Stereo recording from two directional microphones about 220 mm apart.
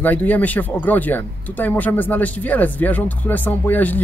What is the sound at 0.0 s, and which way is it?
Speech, 5° left (ahead or behind).